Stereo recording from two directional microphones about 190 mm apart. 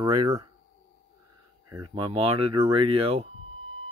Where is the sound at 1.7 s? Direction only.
25° right (ahead or behind).